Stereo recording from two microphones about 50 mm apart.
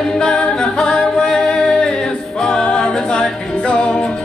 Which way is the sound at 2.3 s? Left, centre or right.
Centre.